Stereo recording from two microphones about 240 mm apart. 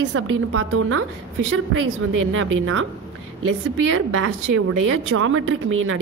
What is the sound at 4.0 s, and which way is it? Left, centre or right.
A woman's voice, right.